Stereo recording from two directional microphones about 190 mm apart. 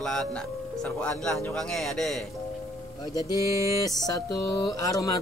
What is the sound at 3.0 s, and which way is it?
Mantra, 20° left (ahead or behind).